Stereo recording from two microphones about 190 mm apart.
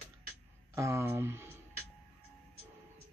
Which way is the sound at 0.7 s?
15° right (ahead or behind).